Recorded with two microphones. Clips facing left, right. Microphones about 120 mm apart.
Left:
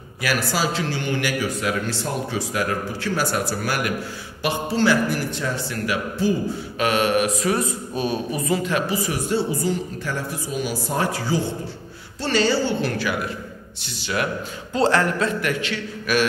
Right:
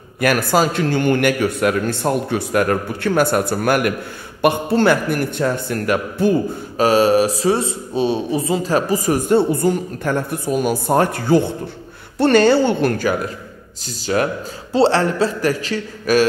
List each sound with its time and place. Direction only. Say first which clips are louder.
0.2 s a man's voice: right 7 dB; 55° right (ahead or behind)
6.8 s a man's voice: right 7 dB; 35° right (ahead or behind)